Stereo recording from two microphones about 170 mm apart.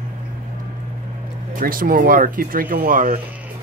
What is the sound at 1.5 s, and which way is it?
Speech, 55° right (ahead or behind).